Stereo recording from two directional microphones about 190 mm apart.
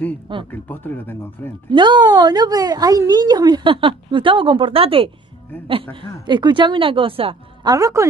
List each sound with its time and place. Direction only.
0.5 s speech: 10° left (ahead or behind)
1.7 s a woman's voice: 25° right (ahead or behind)
6.2 s a woman's voice: 25° right (ahead or behind)
7.7 s speech: 15° right (ahead or behind)